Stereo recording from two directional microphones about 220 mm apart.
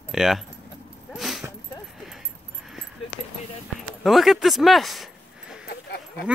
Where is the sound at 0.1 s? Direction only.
Centre (ahead or behind).